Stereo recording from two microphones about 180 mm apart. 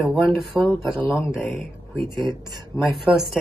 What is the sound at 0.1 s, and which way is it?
Speech, centre (ahead or behind).